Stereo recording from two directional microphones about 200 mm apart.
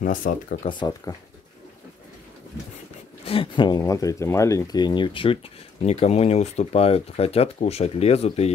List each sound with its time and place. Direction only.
0.0 s speech: 45° left (ahead or behind)
0.7 s speech: 20° left (ahead or behind)
3.3 s speech: 25° left (ahead or behind)